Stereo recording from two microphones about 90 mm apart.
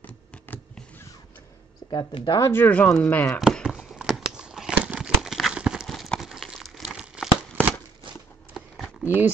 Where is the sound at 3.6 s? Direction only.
5° right (ahead or behind).